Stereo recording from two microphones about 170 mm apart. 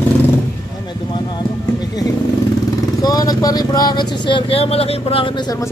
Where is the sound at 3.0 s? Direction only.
20° left (ahead or behind).